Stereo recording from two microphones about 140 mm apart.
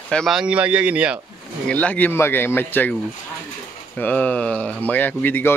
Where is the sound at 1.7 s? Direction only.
10° left (ahead or behind).